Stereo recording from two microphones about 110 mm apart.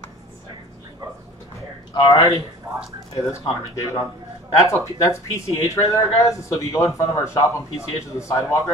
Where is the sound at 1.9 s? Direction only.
30° left (ahead or behind).